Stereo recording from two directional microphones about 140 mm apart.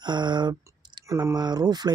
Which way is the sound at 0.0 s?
30° right (ahead or behind).